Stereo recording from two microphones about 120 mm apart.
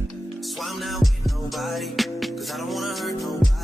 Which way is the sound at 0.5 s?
Centre (ahead or behind).